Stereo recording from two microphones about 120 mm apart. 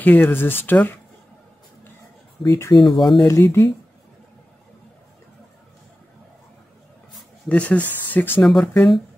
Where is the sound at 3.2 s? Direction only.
25° left (ahead or behind).